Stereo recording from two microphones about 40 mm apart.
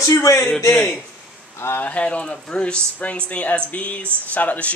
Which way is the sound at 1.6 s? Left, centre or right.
Left.